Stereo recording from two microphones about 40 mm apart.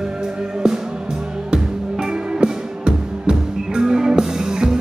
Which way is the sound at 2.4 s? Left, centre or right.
Right.